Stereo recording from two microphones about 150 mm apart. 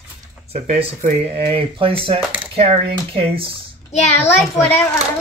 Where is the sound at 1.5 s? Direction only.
40° right (ahead or behind).